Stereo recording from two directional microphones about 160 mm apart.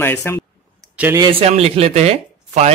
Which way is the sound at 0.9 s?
10° right (ahead or behind).